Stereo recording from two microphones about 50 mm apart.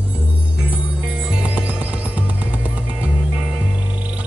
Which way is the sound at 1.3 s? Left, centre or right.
Right.